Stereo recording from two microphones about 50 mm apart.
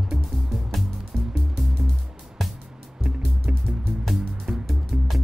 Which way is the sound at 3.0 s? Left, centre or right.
Centre.